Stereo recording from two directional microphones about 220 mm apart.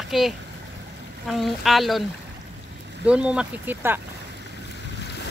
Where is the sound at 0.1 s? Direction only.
Centre (ahead or behind).